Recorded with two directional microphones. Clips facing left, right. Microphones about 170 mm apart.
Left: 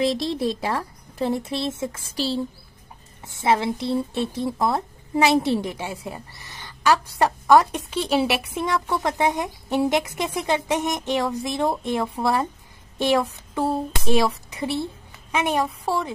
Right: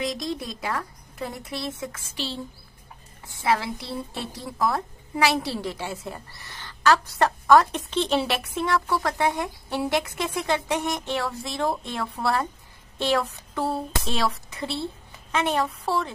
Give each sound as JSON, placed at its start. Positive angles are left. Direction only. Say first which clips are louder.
{"t": 0.0, "sound": "speech", "louder": "left 7 dB", "side_deg": 30}
{"t": 3.3, "sound": "speech", "louder": "left 4 dB", "side_deg": 20}